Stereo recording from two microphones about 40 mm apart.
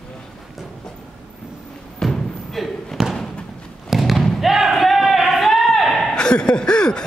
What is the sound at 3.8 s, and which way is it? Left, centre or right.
Thump, centre.